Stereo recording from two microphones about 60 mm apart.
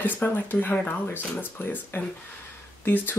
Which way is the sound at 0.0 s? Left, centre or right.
Left.